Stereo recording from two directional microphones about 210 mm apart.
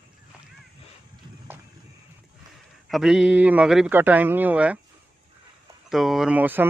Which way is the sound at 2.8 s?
Centre (ahead or behind).